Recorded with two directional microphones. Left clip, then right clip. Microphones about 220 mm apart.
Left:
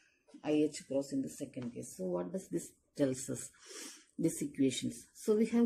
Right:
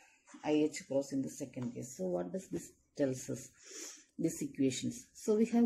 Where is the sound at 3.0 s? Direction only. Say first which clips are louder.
Left 1 dB; 15° left (ahead or behind).